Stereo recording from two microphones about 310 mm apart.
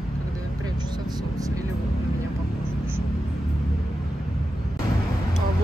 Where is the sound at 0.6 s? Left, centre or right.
Centre.